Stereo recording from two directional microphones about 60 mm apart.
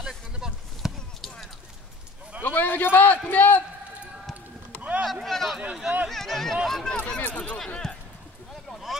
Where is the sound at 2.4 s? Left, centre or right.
Left.